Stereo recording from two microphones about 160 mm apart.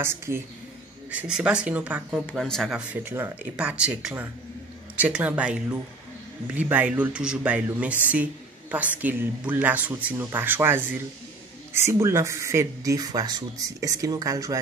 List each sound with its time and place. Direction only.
0.0 s speech: 15° right (ahead or behind)
2.2 s speech: 5° left (ahead or behind)
2.9 s speech: 10° right (ahead or behind)